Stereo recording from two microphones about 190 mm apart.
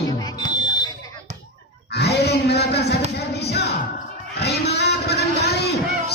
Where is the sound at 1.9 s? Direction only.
60° left (ahead or behind).